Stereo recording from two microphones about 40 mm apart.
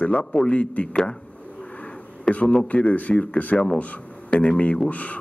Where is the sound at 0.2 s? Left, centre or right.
Centre.